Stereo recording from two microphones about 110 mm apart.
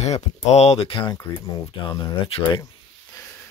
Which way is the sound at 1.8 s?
40° left (ahead or behind).